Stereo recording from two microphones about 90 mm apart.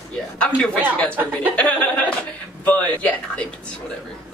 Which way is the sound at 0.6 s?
10° left (ahead or behind).